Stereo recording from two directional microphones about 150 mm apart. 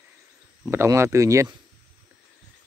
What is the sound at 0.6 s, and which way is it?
Speech, 20° right (ahead or behind).